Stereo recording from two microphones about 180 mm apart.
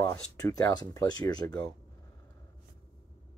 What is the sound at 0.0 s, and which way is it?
Speech, 20° left (ahead or behind).